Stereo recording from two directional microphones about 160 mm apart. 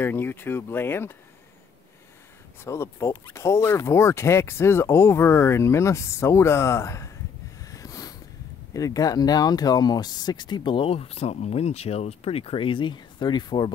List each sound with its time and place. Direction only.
0.0 s speech: 15° left (ahead or behind)
2.6 s speech: 15° left (ahead or behind)
7.6 s a sound: 20° left (ahead or behind)
8.7 s speech: 20° left (ahead or behind)